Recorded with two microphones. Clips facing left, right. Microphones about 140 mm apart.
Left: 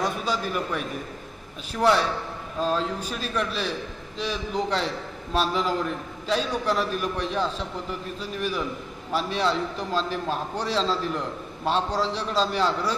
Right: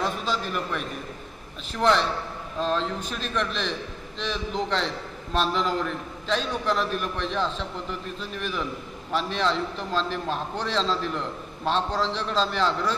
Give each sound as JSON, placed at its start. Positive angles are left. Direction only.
{"t": 0.0, "sound": "a man's voice", "side_deg": 10}